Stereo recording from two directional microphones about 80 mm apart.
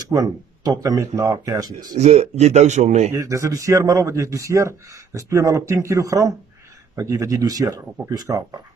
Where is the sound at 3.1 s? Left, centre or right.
Right.